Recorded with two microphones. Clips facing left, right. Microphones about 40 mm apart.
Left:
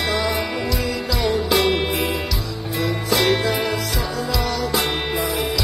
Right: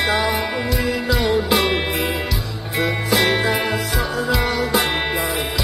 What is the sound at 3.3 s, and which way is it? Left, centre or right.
Music, right.